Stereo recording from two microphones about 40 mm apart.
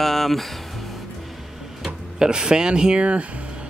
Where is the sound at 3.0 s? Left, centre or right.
Right.